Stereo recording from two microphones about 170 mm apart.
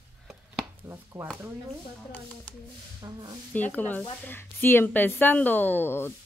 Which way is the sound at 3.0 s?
25° right (ahead or behind).